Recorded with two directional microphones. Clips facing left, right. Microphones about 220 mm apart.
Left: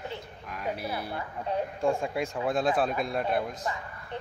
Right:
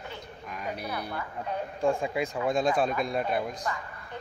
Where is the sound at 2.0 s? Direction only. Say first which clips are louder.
Right 1 dB; centre (ahead or behind).